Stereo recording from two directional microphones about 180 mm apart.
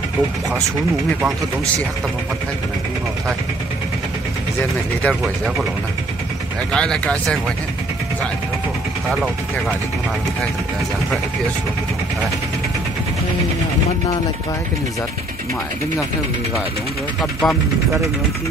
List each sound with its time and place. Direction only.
5.0 s speech: centre (ahead or behind)
6.7 s speech: 5° left (ahead or behind)
9.1 s speech: 5° right (ahead or behind)
17.2 s speech: centre (ahead or behind)